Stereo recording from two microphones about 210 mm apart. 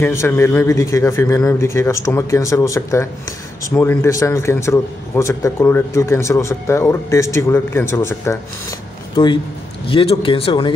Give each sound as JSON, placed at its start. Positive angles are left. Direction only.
{"t": 0.0, "sound": "a man's voice", "side_deg": 10}